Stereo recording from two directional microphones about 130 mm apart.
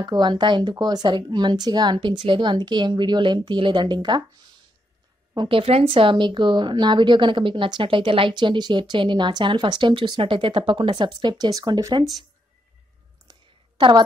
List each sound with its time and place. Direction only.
0.0 s speech: 35° right (ahead or behind)
5.3 s speech: 40° right (ahead or behind)
13.3 s a sound: 35° right (ahead or behind)